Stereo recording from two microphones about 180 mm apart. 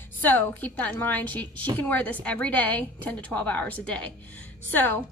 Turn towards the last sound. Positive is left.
turn(degrees=10)  # may be behind; listen again after turning